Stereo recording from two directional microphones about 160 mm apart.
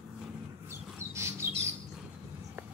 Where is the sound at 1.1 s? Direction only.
15° right (ahead or behind).